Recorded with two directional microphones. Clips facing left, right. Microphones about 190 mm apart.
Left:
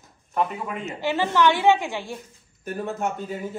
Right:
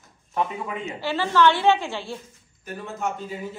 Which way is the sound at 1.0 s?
15° left (ahead or behind).